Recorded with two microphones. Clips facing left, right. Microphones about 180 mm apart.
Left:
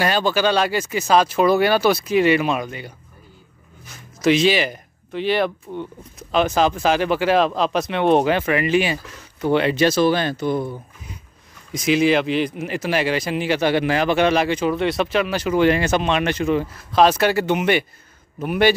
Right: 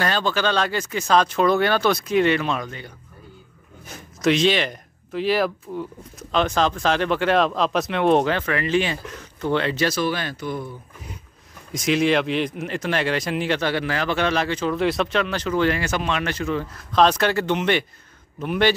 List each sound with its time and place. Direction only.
0.0 s speech: 10° left (ahead or behind)
4.2 s speech: 5° left (ahead or behind)
8.3 s speech: 15° left (ahead or behind)
11.7 s speech: centre (ahead or behind)
13.6 s speech: 15° left (ahead or behind)
14.8 s speech: centre (ahead or behind); by 16.6 s 20° left (ahead or behind)
16.7 s speech: 5° left (ahead or behind)